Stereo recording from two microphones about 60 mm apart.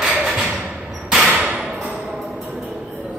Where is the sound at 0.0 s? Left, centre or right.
Centre.